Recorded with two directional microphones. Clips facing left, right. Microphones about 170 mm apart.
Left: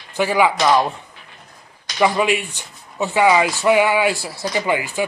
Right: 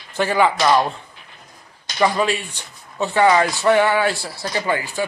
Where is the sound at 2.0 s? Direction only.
15° left (ahead or behind).